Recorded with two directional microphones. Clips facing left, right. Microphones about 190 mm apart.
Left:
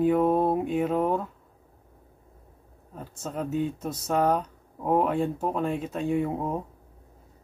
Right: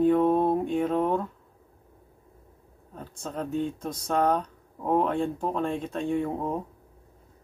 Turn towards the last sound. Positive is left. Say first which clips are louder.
# left 1 dB
turn(degrees=5)  # may be behind; listen again after turning